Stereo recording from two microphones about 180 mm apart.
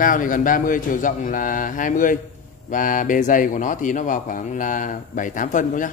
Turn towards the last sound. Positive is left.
turn(degrees=45)  # may be behind; listen again after turning